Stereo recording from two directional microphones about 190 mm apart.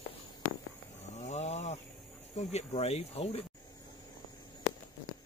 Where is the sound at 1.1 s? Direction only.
35° left (ahead or behind).